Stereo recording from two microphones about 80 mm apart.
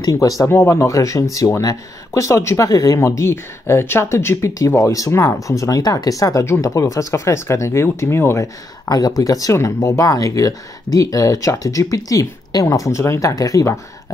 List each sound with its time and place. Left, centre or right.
0.0 s speech: left
2.7 s speech: left
5.8 s speech: left
6.4 s speech: left
8.8 s speech: left